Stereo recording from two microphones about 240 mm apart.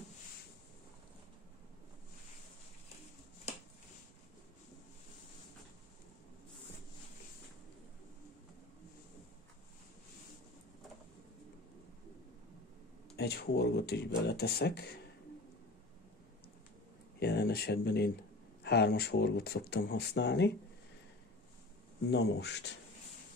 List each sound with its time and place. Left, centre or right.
13.1 s speech: left
17.2 s speech: left
22.1 s speech: left